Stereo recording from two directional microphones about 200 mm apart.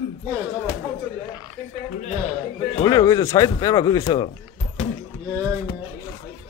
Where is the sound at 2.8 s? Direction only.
20° left (ahead or behind).